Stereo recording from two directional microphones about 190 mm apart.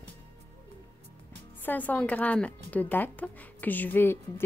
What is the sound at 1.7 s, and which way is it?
A woman's voice, 10° left (ahead or behind).